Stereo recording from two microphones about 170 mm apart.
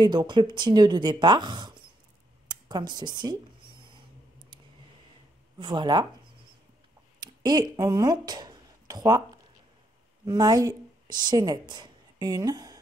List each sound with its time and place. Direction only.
0.0 s speech: 25° right (ahead or behind)
5.6 s speech: 25° right (ahead or behind)
7.2 s a woman's voice: 25° right (ahead or behind)